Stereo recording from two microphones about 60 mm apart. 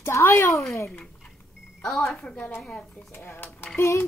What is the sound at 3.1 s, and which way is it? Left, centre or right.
Speech, left.